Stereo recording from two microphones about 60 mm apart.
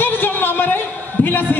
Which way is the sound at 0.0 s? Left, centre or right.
Left.